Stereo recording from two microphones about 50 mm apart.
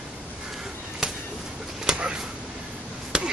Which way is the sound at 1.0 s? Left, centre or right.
Centre.